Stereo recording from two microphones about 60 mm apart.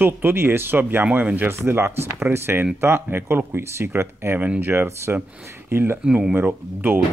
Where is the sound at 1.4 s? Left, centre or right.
Right.